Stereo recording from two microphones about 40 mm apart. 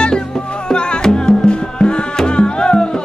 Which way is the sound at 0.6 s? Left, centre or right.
Left.